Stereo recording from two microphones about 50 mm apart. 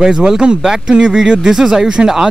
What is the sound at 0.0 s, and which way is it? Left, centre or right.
Speech, centre.